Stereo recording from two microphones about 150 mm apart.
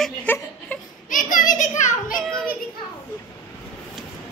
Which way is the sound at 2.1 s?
Centre (ahead or behind).